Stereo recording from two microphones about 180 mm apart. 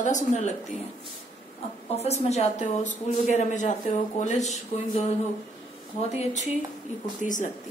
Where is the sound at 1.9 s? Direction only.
35° left (ahead or behind).